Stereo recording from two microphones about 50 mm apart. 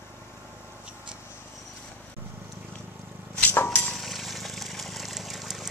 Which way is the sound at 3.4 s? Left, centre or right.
Left.